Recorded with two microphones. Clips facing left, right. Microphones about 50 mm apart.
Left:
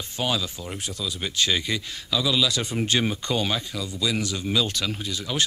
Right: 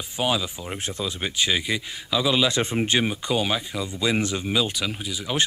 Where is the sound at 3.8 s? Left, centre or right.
Right.